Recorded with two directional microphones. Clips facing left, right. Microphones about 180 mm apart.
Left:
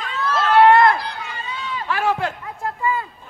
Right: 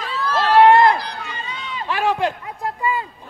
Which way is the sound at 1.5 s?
20° right (ahead or behind).